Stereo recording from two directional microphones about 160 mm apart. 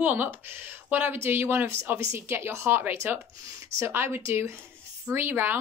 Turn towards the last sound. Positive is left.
turn(degrees=-15)  # may be behind; listen again after turning